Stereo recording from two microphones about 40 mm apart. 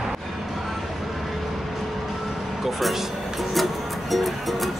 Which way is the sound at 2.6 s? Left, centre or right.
Centre.